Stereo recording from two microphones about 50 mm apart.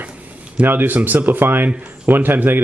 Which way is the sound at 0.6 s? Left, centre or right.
Right.